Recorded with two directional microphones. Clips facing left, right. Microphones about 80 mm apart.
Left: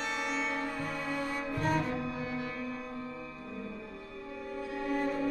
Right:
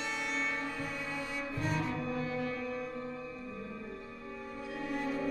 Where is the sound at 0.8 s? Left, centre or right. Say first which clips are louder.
Left 4 dB; left.